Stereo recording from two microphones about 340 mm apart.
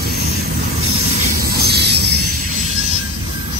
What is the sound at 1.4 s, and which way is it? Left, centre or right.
Train, right.